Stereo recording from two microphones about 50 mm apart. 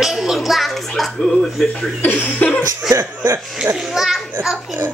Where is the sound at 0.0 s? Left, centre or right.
Centre.